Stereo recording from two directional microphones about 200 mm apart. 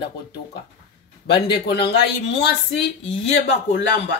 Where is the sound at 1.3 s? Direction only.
55° left (ahead or behind).